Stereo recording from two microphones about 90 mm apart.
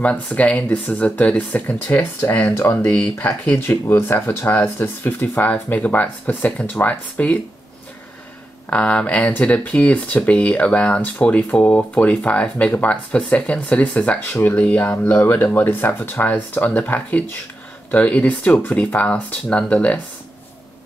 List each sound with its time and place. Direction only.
0.0 s speech: 15° left (ahead or behind)
2.9 s speech: 15° left (ahead or behind)
8.6 s speech: 15° left (ahead or behind)